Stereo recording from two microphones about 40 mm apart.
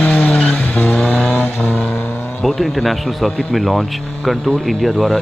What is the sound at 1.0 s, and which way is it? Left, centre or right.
Vehicle, centre.